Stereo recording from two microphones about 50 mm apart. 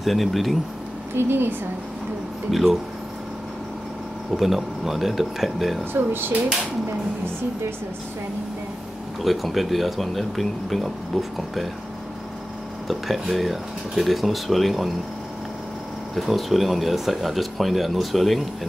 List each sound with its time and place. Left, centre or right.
0.0 s speech: centre
1.1 s speech: right
2.5 s speech: centre
4.3 s speech: centre
5.9 s speech: right
9.2 s speech: centre
12.8 s speech: centre
16.2 s speech: centre